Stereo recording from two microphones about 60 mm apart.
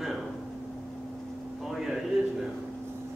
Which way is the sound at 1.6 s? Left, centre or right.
Centre.